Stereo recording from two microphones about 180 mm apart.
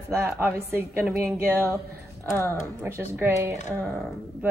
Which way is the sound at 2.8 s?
10° right (ahead or behind).